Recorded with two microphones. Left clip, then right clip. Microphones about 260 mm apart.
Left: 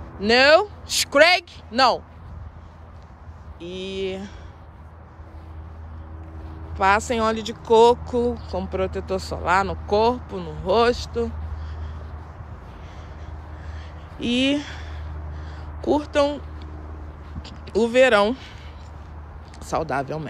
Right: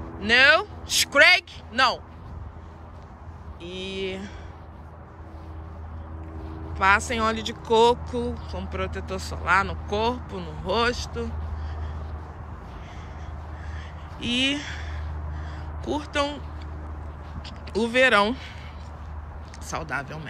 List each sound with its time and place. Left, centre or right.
0.2 s speech: centre
3.6 s speech: centre
6.8 s speech: centre
14.1 s speech: centre
17.4 s speech: centre
19.6 s speech: centre